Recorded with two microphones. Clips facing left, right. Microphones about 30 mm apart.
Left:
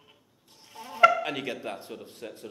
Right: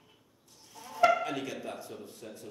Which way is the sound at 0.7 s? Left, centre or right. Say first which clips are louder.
Left 4 dB; left.